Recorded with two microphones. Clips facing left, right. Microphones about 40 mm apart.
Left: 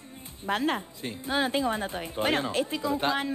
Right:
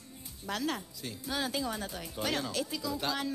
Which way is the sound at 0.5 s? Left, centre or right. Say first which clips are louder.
Left 7 dB; left.